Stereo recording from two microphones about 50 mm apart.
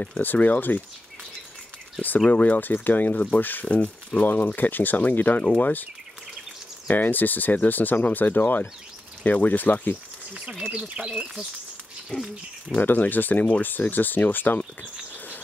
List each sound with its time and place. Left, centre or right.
0.2 s speech: left
2.0 s speech: left
3.6 s speech: left
6.9 s speech: left
10.3 s speech: centre
12.1 s speech: left
12.8 s speech: left